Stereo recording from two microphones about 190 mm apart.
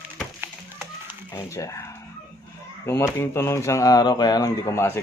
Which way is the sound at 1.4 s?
15° left (ahead or behind).